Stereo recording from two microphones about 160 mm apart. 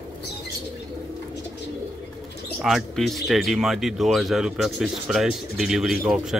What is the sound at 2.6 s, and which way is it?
Speech, centre (ahead or behind).